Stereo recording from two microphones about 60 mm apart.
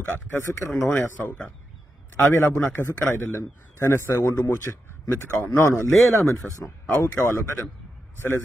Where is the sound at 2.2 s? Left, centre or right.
Left.